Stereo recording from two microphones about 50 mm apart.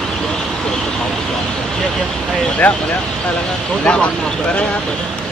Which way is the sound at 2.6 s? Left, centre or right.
Left.